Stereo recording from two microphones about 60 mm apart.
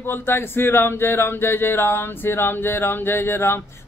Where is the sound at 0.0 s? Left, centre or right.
Left.